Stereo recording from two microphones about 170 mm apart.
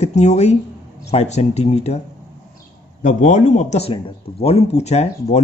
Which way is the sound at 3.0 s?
50° left (ahead or behind).